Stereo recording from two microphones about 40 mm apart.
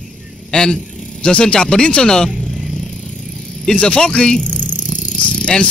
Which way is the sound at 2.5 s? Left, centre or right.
Centre.